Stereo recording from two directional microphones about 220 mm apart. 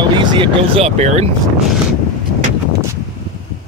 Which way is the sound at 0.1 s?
20° right (ahead or behind).